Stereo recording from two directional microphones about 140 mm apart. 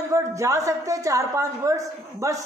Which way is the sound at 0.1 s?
20° right (ahead or behind).